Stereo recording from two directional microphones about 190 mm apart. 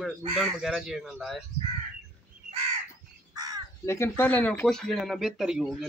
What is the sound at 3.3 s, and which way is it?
Crow, 20° right (ahead or behind).